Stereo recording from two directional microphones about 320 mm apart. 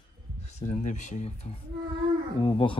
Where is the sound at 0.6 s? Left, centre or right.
Left.